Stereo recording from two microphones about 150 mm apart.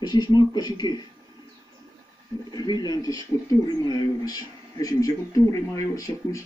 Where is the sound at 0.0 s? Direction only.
30° left (ahead or behind).